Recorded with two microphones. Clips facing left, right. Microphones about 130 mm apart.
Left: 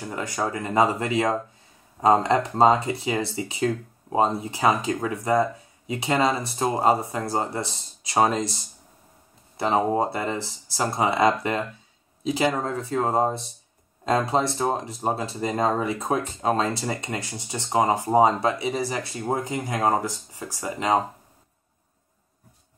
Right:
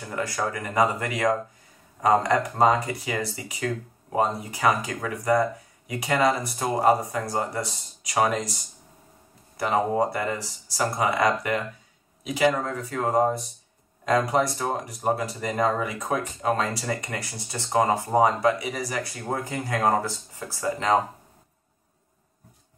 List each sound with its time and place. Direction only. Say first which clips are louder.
0.1 s speech: even; 20° left (ahead or behind)
9.6 s speech: left 1 dB; 25° left (ahead or behind)